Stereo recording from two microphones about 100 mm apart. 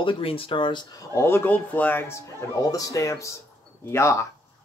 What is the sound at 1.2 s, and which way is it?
Speech, 20° left (ahead or behind).